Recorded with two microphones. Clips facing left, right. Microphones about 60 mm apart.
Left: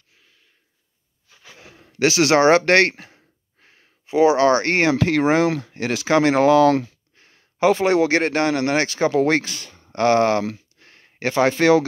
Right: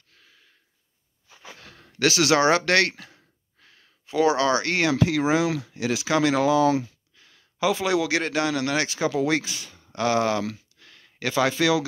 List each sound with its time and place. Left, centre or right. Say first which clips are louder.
1.6 s a sound: left 2 dB; centre
2.0 s speech: left 4 dB; left
4.9 s speech: left 4 dB; left
6.5 s speech: left 6 dB; left
7.2 s speech: left 6 dB; left